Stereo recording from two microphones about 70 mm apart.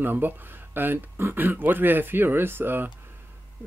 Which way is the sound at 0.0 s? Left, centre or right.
Right.